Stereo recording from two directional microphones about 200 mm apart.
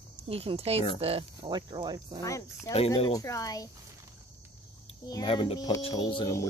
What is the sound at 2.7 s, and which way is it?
Speech, 30° left (ahead or behind).